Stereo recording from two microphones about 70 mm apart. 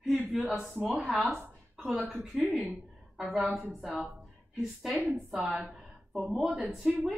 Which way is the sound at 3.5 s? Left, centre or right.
Centre.